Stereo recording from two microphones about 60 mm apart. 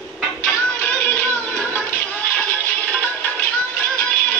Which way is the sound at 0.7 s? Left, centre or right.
Left.